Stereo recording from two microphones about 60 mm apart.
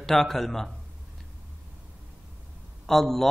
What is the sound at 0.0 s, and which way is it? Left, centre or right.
Speech, centre.